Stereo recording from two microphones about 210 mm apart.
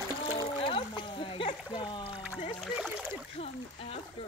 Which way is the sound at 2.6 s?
Centre (ahead or behind).